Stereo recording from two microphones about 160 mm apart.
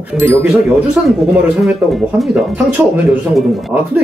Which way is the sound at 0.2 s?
15° right (ahead or behind).